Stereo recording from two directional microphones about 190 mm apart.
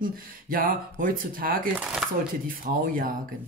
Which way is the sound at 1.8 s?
5° right (ahead or behind).